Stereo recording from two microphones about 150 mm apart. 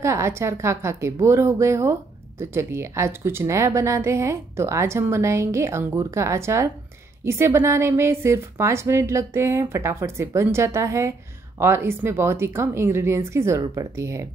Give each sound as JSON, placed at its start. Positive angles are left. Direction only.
{"t": 0.0, "sound": "a woman's voice", "side_deg": -20}